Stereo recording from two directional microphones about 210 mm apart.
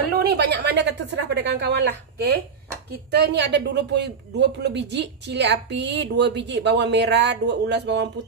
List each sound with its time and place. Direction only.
0.3 s a woman's voice: 50° right (ahead or behind)